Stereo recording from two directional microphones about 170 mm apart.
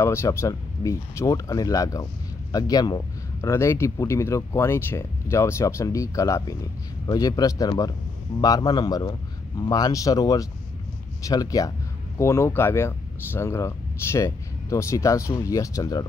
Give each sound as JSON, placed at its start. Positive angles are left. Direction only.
{"t": 0.0, "sound": "speech", "side_deg": 15}